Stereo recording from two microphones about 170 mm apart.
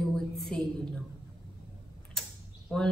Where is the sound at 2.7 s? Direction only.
Centre (ahead or behind).